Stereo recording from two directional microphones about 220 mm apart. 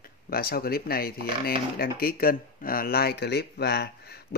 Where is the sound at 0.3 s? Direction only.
45° left (ahead or behind).